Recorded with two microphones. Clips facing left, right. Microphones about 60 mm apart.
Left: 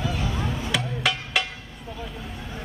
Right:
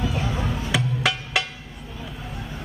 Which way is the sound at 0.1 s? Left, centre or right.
Centre.